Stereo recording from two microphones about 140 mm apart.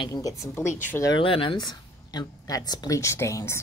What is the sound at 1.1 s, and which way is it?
Speech, 40° left (ahead or behind).